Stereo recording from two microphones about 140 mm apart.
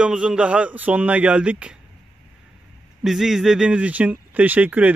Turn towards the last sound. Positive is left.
turn(degrees=-10)  # may be behind; listen again after turning